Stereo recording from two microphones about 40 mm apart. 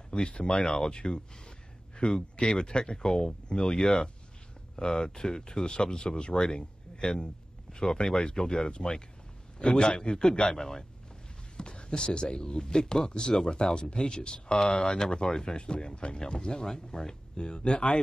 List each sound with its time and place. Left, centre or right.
0.1 s speech: left